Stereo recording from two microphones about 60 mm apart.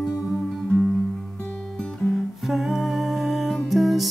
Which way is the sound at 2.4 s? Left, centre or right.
Centre.